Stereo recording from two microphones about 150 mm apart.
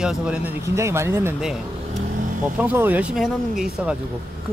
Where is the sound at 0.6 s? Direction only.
20° right (ahead or behind).